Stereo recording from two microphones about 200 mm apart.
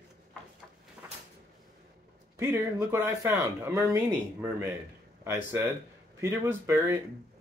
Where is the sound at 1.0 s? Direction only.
10° right (ahead or behind).